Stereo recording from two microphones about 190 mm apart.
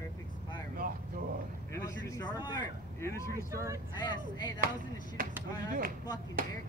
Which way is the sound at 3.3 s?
15° right (ahead or behind).